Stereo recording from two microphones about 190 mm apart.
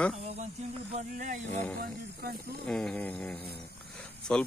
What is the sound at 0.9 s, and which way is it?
Speech, 40° right (ahead or behind).